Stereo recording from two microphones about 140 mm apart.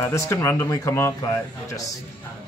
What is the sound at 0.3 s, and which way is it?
Speech, 20° left (ahead or behind).